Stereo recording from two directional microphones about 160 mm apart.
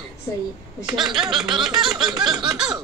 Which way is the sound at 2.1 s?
25° right (ahead or behind).